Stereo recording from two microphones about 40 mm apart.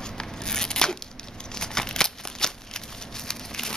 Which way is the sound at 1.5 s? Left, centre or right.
Centre.